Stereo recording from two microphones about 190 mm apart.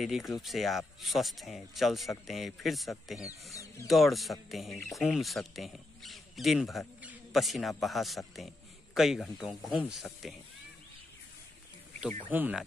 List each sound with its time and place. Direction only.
0.0 s a man's voice: centre (ahead or behind)
12.3 s speech: 10° right (ahead or behind)